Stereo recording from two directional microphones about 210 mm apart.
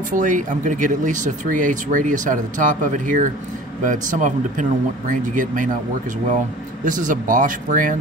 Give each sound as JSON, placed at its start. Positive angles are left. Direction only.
{"t": 0.1, "sound": "speech", "side_deg": -40}
{"t": 6.8, "sound": "speech", "side_deg": -40}